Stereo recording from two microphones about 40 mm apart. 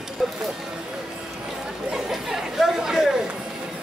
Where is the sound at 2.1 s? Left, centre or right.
Centre.